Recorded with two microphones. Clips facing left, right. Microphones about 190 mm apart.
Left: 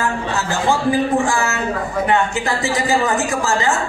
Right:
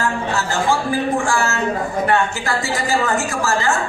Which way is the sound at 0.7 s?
20° left (ahead or behind).